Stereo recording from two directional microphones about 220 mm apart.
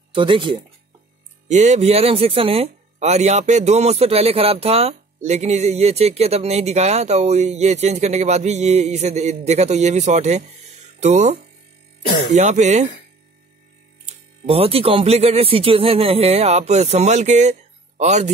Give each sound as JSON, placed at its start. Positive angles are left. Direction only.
{"t": 0.1, "sound": "speech", "side_deg": -25}
{"t": 14.4, "sound": "speech", "side_deg": -25}